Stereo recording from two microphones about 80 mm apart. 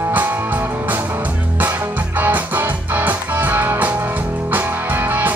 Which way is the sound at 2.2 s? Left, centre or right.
Right.